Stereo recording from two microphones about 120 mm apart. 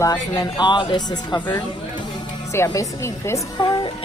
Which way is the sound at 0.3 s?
35° left (ahead or behind).